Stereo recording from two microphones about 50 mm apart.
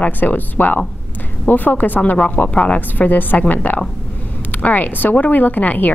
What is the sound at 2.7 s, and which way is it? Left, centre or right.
A woman's voice, left.